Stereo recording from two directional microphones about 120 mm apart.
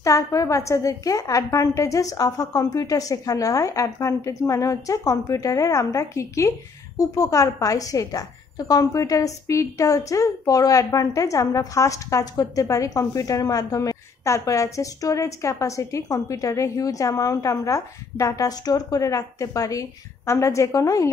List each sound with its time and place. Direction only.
0.0 s a woman's voice: 30° left (ahead or behind)